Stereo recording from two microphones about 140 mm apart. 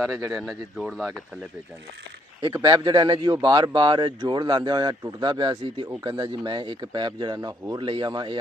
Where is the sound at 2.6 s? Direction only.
30° right (ahead or behind).